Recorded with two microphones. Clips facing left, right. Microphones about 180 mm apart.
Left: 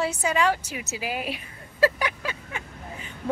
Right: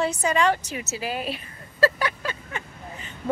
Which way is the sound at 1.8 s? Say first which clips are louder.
Right 1 dB; 10° left (ahead or behind).